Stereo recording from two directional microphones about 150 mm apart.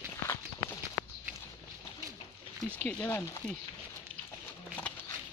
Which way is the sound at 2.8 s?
15° left (ahead or behind).